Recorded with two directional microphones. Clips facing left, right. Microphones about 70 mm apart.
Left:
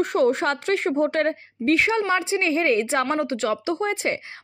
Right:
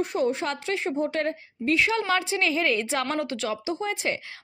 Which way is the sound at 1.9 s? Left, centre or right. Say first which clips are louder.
Left 3 dB; centre.